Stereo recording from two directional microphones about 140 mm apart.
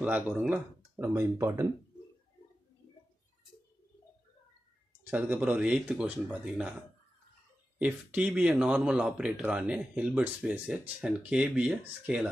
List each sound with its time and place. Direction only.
0.0 s speech: 10° right (ahead or behind)
1.1 s speech: 20° right (ahead or behind)
5.1 s speech: 10° right (ahead or behind)
7.8 s speech: 5° right (ahead or behind)